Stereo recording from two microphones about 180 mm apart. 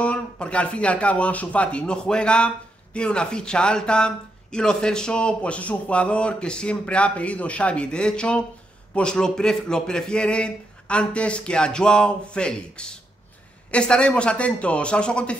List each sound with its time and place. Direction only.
0.0 s speech: 5° left (ahead or behind)